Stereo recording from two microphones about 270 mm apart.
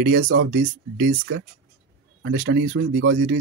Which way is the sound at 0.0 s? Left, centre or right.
Right.